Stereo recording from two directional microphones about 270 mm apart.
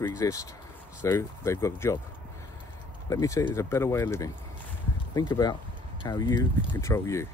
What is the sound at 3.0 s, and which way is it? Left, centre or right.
Speech, centre.